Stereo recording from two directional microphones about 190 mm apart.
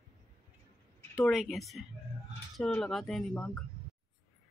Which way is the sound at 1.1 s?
Centre (ahead or behind).